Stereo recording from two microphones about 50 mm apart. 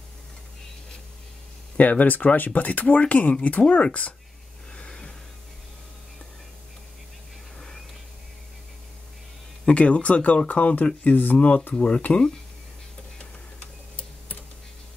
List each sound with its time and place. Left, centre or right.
1.8 s speech: left
4.7 s vehicle: centre
7.5 s a sound: centre
9.7 s speech: left
11.3 s speech: left